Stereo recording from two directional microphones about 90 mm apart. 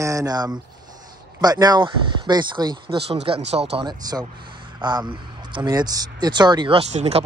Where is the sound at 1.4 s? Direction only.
45° right (ahead or behind).